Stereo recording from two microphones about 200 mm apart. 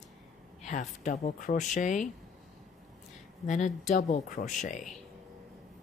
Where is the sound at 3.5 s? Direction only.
40° left (ahead or behind).